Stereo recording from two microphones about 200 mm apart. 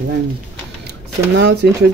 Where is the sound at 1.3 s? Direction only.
60° right (ahead or behind).